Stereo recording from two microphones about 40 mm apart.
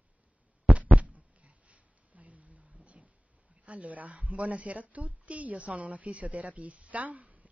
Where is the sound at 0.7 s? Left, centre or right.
Right.